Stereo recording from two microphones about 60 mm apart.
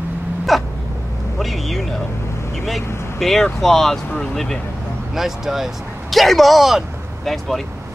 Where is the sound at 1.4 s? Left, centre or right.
Centre.